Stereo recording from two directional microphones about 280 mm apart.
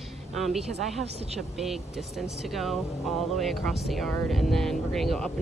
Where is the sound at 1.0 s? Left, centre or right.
Right.